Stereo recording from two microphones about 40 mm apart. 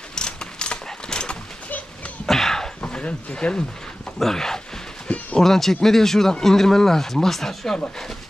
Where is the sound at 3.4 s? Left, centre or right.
Left.